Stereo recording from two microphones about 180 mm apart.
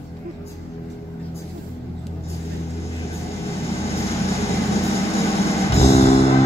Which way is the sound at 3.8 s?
35° left (ahead or behind).